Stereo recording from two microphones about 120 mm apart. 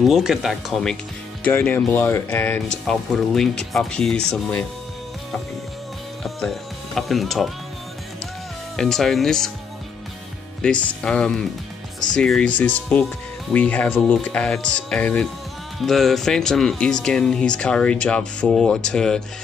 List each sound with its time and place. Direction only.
0.1 s speech: 5° right (ahead or behind)
1.4 s speech: 15° left (ahead or behind)
2.9 s speech: 5° left (ahead or behind)
6.2 s speech: centre (ahead or behind)
8.7 s speech: 5° left (ahead or behind)
10.6 s speech: 10° left (ahead or behind)